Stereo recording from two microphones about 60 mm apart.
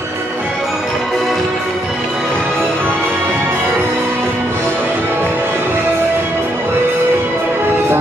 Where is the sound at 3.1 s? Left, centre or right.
Right.